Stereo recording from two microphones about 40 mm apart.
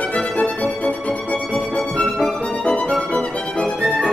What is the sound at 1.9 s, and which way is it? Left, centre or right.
Music, centre.